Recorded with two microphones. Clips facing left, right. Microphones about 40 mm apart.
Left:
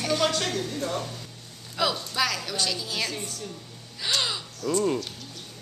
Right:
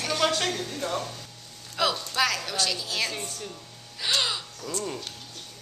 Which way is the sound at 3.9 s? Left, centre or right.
Centre.